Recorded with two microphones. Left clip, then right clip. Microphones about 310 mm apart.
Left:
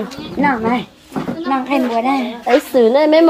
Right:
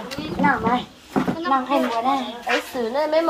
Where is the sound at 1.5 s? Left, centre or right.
Left.